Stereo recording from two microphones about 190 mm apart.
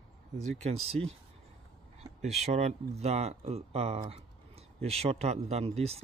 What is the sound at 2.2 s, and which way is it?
Speech, 35° right (ahead or behind).